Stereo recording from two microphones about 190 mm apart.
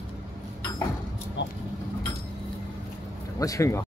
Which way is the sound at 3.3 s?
15° left (ahead or behind).